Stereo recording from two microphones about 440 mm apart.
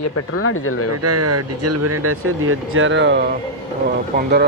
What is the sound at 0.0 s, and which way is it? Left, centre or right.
Speech, left.